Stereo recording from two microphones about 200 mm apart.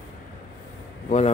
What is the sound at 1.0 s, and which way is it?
Speech, 35° left (ahead or behind).